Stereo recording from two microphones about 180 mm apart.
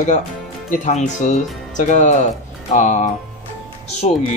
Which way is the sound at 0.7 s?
45° left (ahead or behind).